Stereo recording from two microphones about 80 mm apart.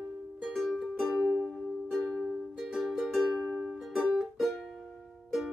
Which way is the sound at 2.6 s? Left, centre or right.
Centre.